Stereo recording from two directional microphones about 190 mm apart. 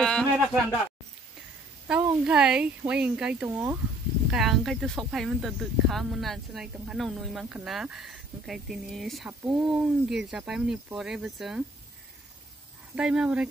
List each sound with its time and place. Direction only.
0.0 s a sound: 5° left (ahead or behind)
2.2 s speech: 5° right (ahead or behind)
3.4 s speech: 15° right (ahead or behind)
4.3 s speech: centre (ahead or behind)
12.9 s speech: 5° right (ahead or behind)